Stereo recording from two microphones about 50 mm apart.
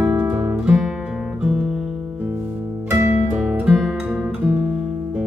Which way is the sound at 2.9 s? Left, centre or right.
Right.